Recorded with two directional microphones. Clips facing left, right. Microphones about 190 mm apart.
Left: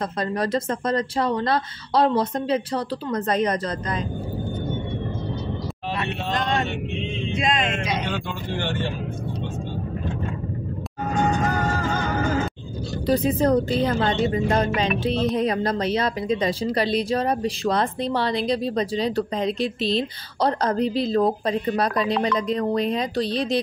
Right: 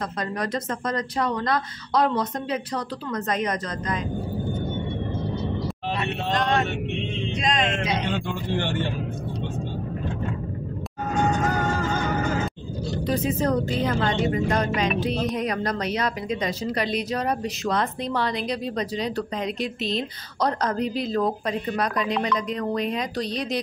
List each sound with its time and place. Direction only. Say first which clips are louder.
0.4 s a woman's voice: left 4 dB; 30° left (ahead or behind)
7.3 s speech: left 1 dB; 5° left (ahead or behind)
13.0 s a woman's voice: left 4 dB; 35° left (ahead or behind)